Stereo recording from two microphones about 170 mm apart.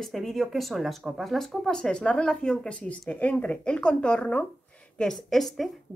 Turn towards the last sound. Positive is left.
turn(degrees=0)  # may be behind; listen again after turning